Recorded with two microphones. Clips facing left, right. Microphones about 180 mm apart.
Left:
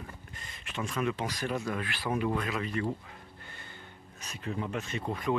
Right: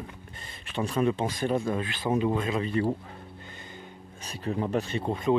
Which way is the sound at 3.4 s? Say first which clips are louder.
Right 5 dB; 20° right (ahead or behind).